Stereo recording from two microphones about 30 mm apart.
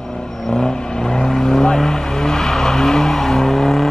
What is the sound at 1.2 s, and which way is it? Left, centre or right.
Vehicle, centre.